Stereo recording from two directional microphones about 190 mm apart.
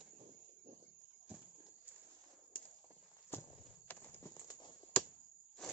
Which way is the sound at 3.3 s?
10° left (ahead or behind).